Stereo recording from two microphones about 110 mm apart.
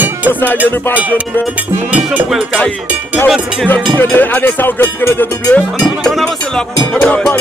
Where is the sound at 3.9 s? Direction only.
15° left (ahead or behind).